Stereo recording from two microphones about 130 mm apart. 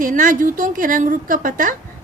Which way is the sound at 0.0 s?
90° right.